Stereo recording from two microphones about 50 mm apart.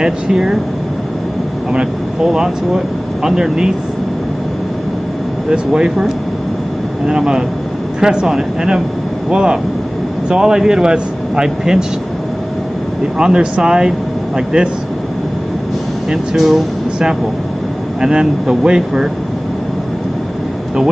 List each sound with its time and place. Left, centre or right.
0.0 s a man's voice: centre
2.2 s a man's voice: centre
5.5 s a man's voice: centre
9.3 s a man's voice: centre
13.2 s a man's voice: centre
16.1 s speech: centre
18.0 s a man's voice: centre